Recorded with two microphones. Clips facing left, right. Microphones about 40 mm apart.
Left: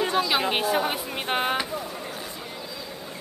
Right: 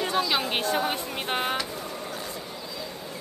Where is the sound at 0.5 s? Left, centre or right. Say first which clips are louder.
Left 2 dB; centre.